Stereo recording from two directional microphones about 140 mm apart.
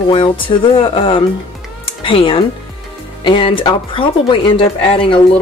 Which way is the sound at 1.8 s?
40° left (ahead or behind).